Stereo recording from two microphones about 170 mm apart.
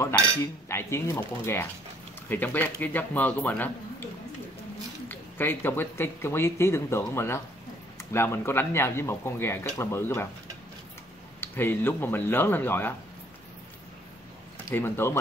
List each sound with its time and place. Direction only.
0.0 s speech: 15° left (ahead or behind)
11.4 s speech: 10° left (ahead or behind)
14.7 s speech: 15° left (ahead or behind)